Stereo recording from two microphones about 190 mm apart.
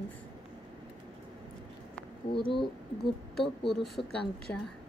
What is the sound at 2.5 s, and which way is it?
A woman's voice, centre (ahead or behind).